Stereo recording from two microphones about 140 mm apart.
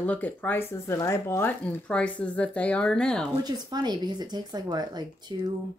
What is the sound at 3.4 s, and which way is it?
Speech, 30° right (ahead or behind).